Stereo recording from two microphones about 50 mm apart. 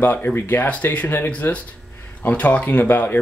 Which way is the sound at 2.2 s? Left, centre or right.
Left.